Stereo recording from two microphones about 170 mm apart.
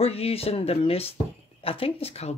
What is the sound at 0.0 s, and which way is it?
Speech, 35° left (ahead or behind).